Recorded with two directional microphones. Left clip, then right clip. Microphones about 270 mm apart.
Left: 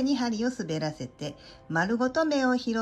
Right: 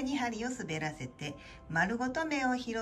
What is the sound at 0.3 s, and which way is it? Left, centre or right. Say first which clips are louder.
Speech: left 7 dB; centre.